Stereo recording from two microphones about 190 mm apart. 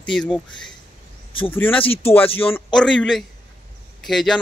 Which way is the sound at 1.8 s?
30° left (ahead or behind).